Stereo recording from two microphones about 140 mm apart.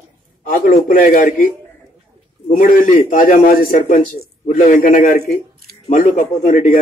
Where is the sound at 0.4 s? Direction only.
80° left.